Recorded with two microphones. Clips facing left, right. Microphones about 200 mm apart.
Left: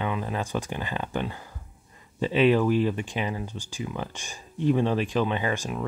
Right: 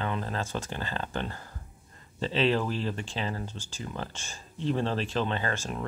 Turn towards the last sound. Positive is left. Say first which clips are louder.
# left 4 dB
turn(degrees=15)  # may be behind; listen again after turning